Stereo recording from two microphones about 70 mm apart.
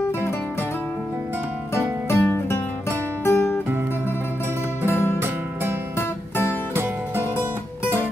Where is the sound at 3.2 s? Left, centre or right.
Left.